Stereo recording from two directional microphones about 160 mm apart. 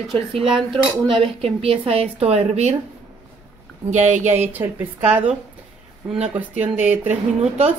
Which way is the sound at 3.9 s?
50° right (ahead or behind).